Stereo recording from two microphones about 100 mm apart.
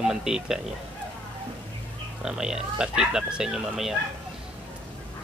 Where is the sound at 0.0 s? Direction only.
5° right (ahead or behind).